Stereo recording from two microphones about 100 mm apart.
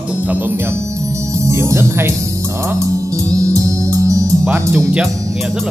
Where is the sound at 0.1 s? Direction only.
15° right (ahead or behind).